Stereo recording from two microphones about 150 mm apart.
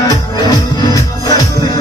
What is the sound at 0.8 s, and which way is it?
Music, 25° left (ahead or behind).